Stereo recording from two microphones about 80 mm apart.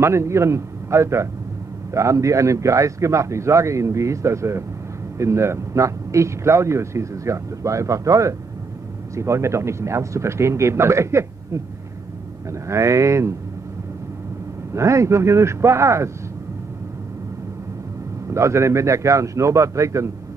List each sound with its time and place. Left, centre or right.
0.0 s speech: right
14.7 s speech: right
18.3 s speech: right